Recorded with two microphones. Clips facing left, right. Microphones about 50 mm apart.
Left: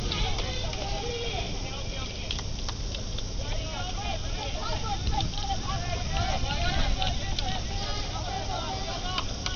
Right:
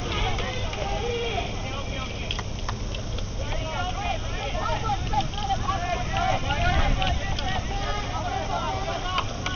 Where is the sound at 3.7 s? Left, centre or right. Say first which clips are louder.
Right 7 dB; right.